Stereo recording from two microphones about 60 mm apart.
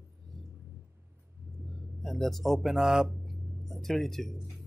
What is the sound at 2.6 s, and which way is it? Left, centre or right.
Speech, centre.